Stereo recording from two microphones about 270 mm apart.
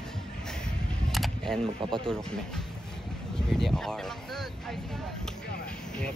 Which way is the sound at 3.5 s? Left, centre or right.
Centre.